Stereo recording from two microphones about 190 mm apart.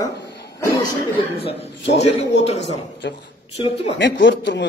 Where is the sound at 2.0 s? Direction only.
35° left (ahead or behind).